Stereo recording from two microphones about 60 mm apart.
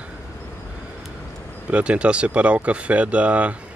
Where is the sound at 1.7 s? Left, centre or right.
Centre.